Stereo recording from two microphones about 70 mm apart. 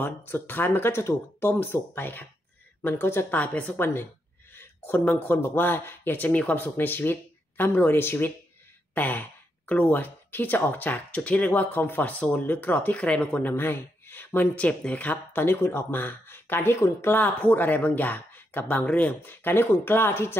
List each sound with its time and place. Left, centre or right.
0.3 s speech: left
3.3 s speech: left
8.9 s a sound: left
9.7 s speech: left
13.5 s speech: left
14.5 s speech: centre; by 20.3 s left